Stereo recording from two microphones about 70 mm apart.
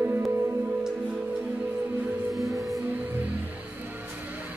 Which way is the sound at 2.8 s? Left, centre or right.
Right.